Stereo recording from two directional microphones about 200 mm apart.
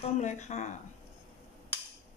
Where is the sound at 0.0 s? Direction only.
35° left (ahead or behind).